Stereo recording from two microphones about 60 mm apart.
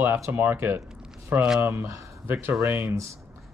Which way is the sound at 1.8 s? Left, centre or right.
Right.